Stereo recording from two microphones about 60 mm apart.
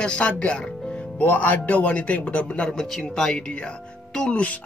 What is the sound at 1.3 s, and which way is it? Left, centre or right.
A man's voice, left.